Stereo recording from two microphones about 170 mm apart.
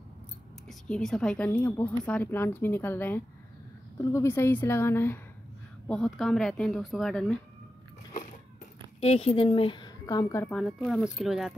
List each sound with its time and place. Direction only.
0.7 s a woman's voice: 5° left (ahead or behind)
9.0 s a woman's voice: 35° left (ahead or behind); by 10.5 s 20° left (ahead or behind)
10.5 s speech: 5° left (ahead or behind)